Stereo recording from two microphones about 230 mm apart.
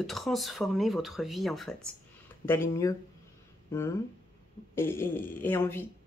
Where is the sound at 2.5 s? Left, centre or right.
Centre.